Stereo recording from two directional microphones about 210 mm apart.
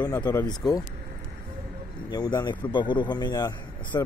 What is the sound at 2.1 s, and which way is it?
A man's voice, 20° left (ahead or behind).